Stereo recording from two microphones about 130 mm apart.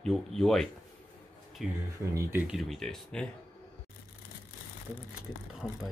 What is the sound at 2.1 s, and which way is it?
Speech, 15° right (ahead or behind).